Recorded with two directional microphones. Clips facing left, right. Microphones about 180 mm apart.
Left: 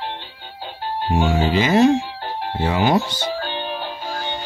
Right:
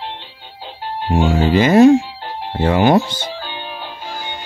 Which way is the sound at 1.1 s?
50° right (ahead or behind).